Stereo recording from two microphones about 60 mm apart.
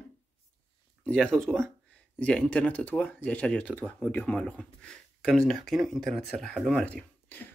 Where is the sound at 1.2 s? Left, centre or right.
Centre.